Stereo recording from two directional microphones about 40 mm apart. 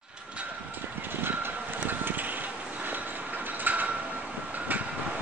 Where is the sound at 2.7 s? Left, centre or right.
Right.